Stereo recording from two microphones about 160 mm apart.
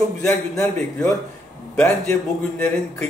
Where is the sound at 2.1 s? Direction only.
15° left (ahead or behind).